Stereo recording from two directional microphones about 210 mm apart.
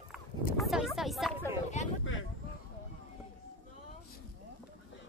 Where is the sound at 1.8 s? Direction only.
35° left (ahead or behind).